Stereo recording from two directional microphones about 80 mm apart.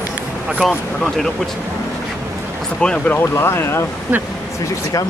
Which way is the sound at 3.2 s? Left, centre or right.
Left.